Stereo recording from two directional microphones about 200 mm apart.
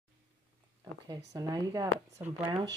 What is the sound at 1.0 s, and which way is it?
Speech, 20° right (ahead or behind).